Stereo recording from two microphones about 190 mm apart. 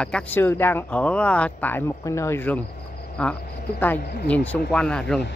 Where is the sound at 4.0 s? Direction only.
55° left (ahead or behind).